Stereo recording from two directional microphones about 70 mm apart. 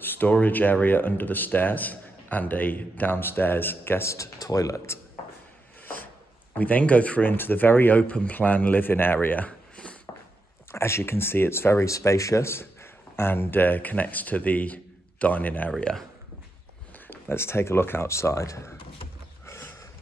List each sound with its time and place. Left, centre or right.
0.0 s speech: left
6.6 s speech: left
8.0 s speech: centre
10.1 s walk: left
10.7 s speech: left
15.8 s speech: centre
17.1 s speech: left